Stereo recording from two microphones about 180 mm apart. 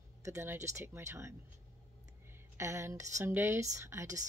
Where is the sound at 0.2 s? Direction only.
15° right (ahead or behind).